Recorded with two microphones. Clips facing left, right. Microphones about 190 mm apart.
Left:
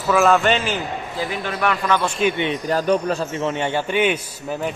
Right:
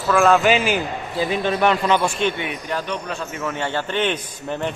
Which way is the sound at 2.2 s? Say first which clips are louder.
Left 2 dB; 5° left (ahead or behind).